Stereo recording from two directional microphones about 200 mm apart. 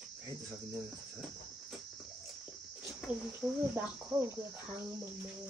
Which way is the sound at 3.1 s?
25° left (ahead or behind).